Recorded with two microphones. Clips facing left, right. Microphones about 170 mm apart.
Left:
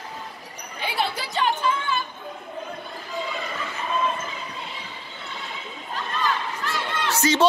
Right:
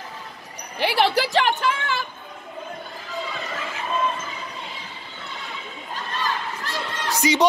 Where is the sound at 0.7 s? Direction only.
85° right.